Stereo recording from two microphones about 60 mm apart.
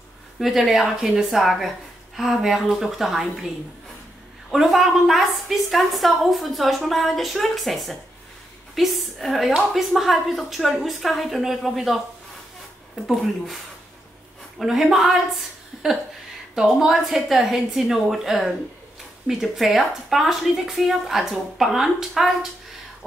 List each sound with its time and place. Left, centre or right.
0.4 s a woman's voice: centre
4.5 s a woman's voice: centre
13.0 s a woman's voice: centre
14.6 s a woman's voice: centre
15.7 s a sound: centre
16.5 s a woman's voice: centre